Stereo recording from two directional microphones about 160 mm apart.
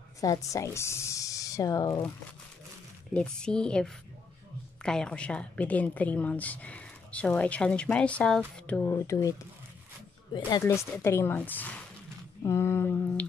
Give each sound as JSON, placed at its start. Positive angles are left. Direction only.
{"t": 0.2, "sound": "speech", "side_deg": 20}
{"t": 3.1, "sound": "a woman's voice", "side_deg": 5}
{"t": 10.6, "sound": "a woman's voice", "side_deg": 15}